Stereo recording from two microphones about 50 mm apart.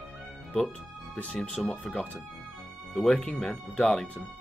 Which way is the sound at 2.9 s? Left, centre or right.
Centre.